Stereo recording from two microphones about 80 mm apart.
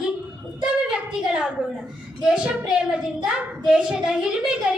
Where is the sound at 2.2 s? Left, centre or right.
Centre.